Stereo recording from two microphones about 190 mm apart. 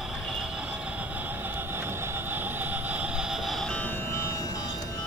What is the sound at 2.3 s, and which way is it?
Vehicle, 10° right (ahead or behind).